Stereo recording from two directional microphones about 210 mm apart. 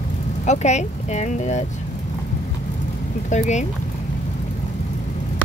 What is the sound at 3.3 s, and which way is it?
Speech, 35° left (ahead or behind).